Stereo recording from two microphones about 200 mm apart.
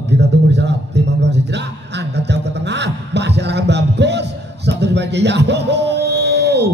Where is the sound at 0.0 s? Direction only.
60° right (ahead or behind).